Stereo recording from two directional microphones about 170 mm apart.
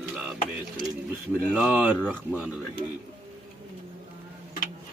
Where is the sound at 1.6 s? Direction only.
5° right (ahead or behind).